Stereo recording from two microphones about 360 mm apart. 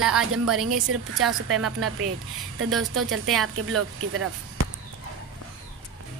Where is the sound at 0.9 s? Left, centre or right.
Right.